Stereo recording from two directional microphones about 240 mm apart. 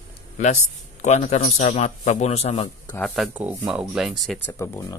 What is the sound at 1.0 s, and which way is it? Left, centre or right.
A man's voice, left.